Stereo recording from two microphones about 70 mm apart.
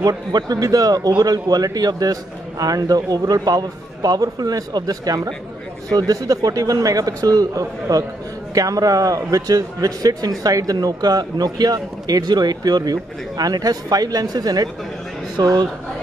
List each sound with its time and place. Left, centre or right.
0.0 s a man's voice: right
15.3 s speech: right